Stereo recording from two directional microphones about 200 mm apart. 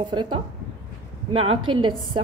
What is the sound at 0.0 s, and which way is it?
A woman's voice, 20° right (ahead or behind).